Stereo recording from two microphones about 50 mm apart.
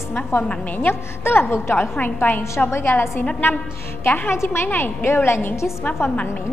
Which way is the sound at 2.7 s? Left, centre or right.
Left.